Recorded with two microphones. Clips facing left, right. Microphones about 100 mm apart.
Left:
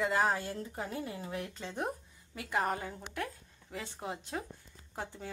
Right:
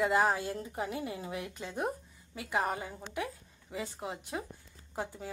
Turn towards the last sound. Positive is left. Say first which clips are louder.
# right 3 dB
turn(degrees=-10)  # may be behind; listen again after turning